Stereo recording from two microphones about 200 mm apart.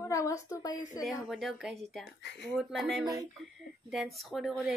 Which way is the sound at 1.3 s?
Centre (ahead or behind).